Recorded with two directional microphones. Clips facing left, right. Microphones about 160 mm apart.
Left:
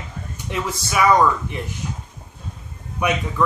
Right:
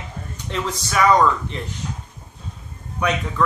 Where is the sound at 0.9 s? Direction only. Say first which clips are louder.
Even; 10° left (ahead or behind).